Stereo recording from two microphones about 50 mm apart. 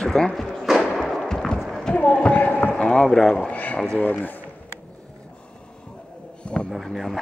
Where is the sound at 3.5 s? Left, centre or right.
Left.